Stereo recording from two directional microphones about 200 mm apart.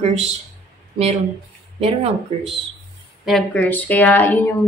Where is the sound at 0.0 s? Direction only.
30° right (ahead or behind).